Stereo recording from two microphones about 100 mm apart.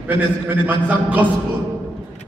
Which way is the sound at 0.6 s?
15° right (ahead or behind).